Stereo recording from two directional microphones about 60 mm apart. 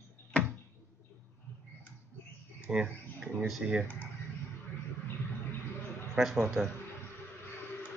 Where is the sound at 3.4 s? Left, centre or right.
Centre.